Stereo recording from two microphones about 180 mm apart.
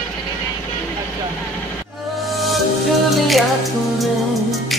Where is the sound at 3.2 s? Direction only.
Centre (ahead or behind).